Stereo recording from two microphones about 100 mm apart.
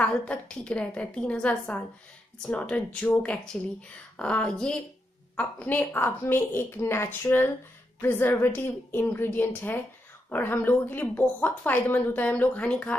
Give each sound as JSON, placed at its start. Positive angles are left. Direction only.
{"t": 0.0, "sound": "a woman's voice", "side_deg": 10}